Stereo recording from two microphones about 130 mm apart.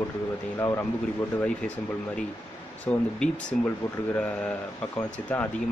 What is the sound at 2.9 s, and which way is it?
Speech, 10° left (ahead or behind).